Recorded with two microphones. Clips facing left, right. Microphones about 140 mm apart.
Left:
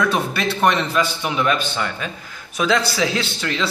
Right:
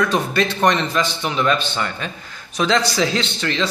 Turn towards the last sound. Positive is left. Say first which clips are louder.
# right 1 dB
turn(degrees=5)  # may be behind; listen again after turning